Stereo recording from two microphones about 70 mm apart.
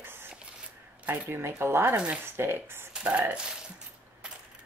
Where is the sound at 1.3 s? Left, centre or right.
Right.